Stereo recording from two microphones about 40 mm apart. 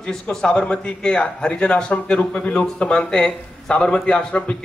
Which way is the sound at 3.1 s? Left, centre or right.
Centre.